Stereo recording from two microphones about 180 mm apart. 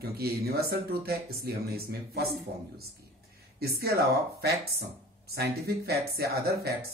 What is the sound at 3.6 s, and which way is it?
Speech, 60° right (ahead or behind).